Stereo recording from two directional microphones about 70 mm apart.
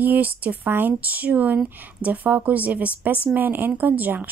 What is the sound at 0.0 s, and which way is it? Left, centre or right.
Speech, right.